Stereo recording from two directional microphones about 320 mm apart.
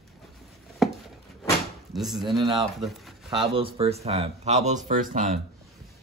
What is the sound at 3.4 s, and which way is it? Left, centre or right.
Speech, centre.